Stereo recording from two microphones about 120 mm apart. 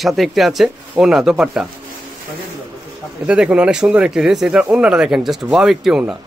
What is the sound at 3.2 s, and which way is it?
Speech, 10° right (ahead or behind).